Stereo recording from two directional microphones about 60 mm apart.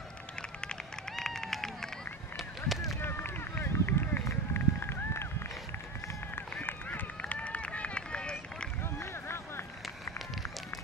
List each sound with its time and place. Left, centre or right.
1.1 s run: centre
2.3 s a sound: centre
3.0 s run: left
6.6 s run: left